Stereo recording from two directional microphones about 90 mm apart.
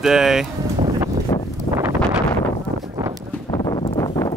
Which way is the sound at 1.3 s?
45° left (ahead or behind).